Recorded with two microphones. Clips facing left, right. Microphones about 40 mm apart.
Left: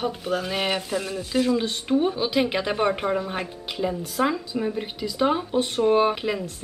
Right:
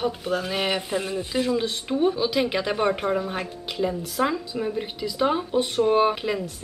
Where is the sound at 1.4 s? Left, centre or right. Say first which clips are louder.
Left 1 dB; centre.